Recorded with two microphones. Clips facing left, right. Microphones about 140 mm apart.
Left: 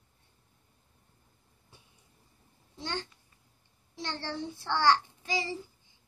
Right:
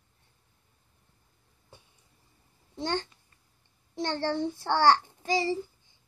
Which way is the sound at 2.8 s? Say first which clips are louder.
Right 6 dB; 45° right (ahead or behind).